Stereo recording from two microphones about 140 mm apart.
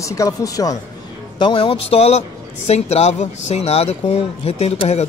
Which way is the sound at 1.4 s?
40° left (ahead or behind).